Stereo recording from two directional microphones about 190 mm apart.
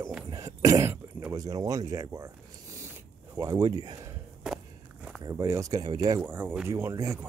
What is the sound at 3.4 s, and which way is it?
Speech, 20° right (ahead or behind).